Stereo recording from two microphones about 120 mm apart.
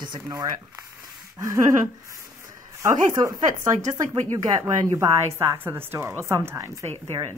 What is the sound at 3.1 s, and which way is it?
A woman's voice, 30° right (ahead or behind).